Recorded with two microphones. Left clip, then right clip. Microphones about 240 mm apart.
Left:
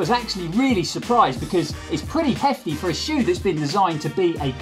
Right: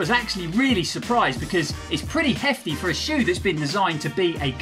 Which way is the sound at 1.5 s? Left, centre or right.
Right.